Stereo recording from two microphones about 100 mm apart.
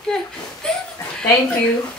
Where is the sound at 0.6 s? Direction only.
10° left (ahead or behind).